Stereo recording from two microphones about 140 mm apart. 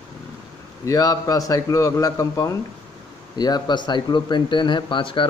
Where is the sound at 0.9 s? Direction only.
25° left (ahead or behind).